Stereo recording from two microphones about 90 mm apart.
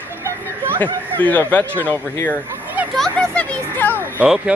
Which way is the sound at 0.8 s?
20° left (ahead or behind).